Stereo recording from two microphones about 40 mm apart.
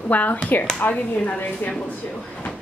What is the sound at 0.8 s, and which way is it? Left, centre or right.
Speech, left.